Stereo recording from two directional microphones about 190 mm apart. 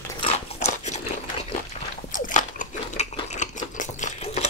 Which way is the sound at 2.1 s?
40° left (ahead or behind).